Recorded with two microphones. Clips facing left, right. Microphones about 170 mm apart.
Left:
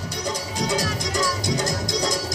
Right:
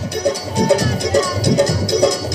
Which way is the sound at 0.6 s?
65° right (ahead or behind).